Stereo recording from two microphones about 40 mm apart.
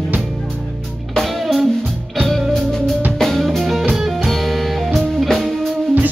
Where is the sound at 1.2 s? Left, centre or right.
Centre.